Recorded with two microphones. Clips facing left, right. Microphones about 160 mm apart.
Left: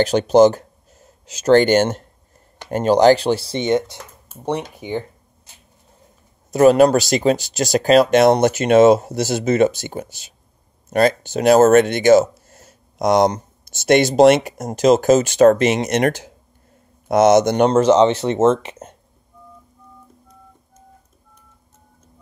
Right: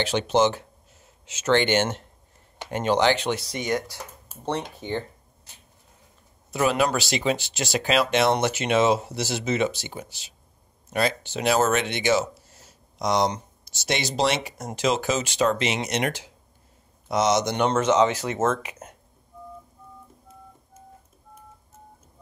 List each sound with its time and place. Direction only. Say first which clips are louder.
0.0 s speech: left 9 dB; 40° left (ahead or behind); by 4.0 s 25° left (ahead or behind)
4.5 s speech: left 5 dB; 15° left (ahead or behind)
6.5 s speech: left 11 dB; 45° left (ahead or behind)
17.6 s speech: left 4 dB; 35° left (ahead or behind)